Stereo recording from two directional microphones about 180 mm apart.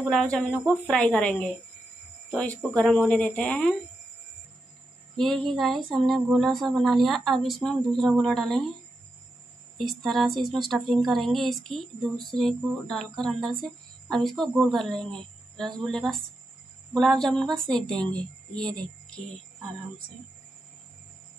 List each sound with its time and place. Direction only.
0.1 s speech: 5° left (ahead or behind)
5.1 s speech: 5° left (ahead or behind)
9.8 s speech: centre (ahead or behind)